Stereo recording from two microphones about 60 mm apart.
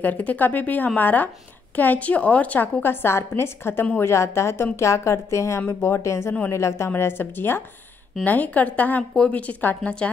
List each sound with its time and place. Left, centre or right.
0.0 s speech: left
2.8 s a woman's voice: left
7.0 s speech: left
8.2 s speech: left